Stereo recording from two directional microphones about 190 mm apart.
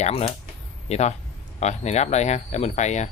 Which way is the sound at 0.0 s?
30° left (ahead or behind).